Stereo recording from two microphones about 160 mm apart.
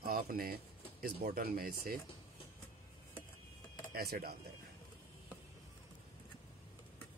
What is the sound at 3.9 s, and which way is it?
Speech, 70° right (ahead or behind).